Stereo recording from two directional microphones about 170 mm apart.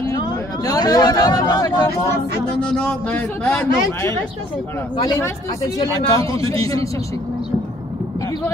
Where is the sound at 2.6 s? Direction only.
5° left (ahead or behind).